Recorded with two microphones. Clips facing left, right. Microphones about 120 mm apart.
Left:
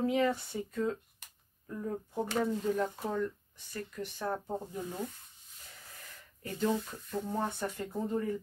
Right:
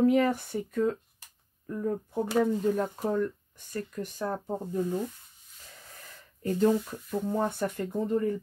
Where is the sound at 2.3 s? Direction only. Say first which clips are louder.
Right 6 dB; 45° right (ahead or behind).